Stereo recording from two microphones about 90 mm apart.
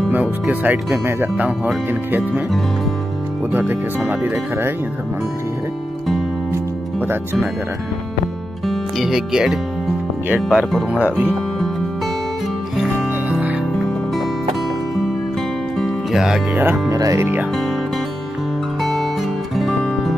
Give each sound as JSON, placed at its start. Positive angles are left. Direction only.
{"t": 0.1, "sound": "speech", "side_deg": -20}
{"t": 4.1, "sound": "speech", "side_deg": -25}
{"t": 8.6, "sound": "speech", "side_deg": 0}
{"t": 12.7, "sound": "music", "side_deg": -5}
{"t": 15.8, "sound": "music", "side_deg": -5}
{"t": 16.5, "sound": "speech", "side_deg": -20}
{"t": 16.9, "sound": "speech", "side_deg": -35}
{"t": 18.8, "sound": "music", "side_deg": 0}